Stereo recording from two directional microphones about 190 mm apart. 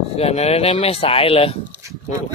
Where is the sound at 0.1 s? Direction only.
35° left (ahead or behind).